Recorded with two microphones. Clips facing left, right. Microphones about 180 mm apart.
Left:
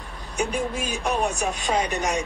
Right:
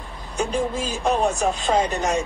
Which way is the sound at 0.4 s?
15° left (ahead or behind).